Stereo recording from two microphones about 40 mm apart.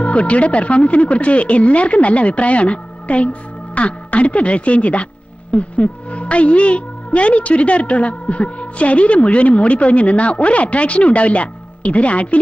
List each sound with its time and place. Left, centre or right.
0.0 s speech: left